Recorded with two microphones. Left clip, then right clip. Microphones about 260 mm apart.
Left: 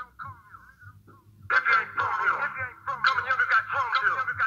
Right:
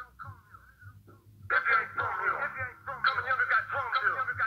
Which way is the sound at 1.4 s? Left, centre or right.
Left.